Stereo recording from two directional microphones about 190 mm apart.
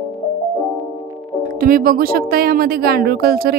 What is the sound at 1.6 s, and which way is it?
A woman's voice, 50° right (ahead or behind).